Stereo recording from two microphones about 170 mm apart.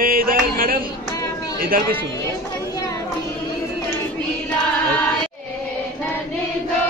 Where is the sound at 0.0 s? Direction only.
55° right (ahead or behind).